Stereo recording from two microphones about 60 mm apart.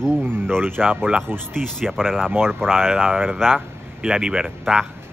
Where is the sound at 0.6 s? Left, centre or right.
Right.